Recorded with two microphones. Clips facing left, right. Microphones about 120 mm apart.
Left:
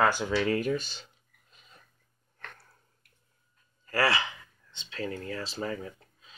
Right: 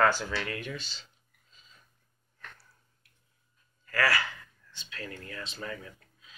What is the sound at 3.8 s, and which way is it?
Gasp, 30° left (ahead or behind).